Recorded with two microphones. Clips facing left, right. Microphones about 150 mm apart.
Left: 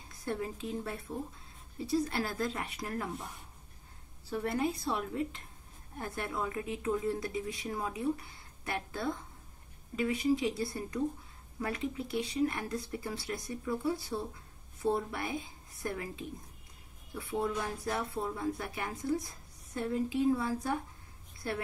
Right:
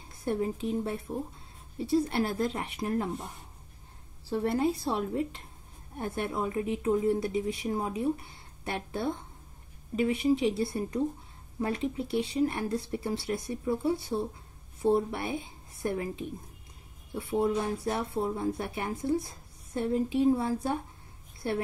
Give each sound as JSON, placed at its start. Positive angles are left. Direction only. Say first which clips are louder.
{"t": 0.1, "sound": "speech", "louder": "right 6 dB", "side_deg": -25}